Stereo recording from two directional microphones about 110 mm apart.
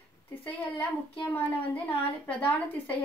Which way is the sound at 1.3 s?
15° left (ahead or behind).